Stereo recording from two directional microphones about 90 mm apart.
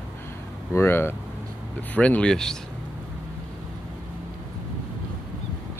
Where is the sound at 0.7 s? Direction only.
25° left (ahead or behind).